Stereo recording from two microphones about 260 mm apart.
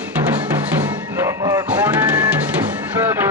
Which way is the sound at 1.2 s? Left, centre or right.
Centre.